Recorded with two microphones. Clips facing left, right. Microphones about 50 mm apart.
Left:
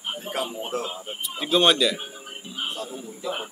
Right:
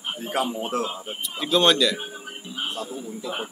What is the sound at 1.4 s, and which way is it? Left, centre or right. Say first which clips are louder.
A man's voice: even; centre.